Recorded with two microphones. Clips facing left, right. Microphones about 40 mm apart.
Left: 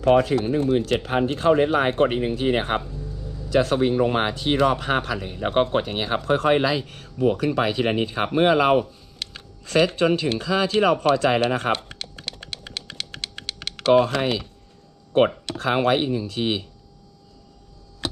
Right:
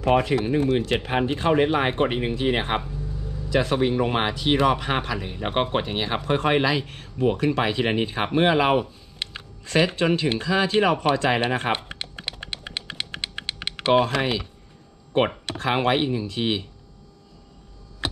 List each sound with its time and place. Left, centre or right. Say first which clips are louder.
0.0 s speech: left 3 dB; centre
11.5 s typing: left 1 dB; centre
15.1 s speech: left 3 dB; centre
18.0 s a sound: even; centre